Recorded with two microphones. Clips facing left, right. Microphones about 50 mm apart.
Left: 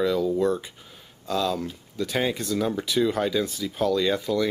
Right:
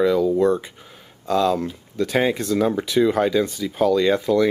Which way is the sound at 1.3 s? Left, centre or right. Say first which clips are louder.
Right 6 dB; centre.